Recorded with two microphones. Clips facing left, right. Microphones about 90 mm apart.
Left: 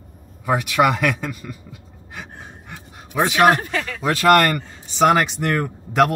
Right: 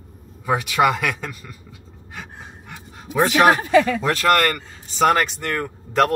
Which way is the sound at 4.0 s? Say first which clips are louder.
Left 3 dB; 10° left (ahead or behind).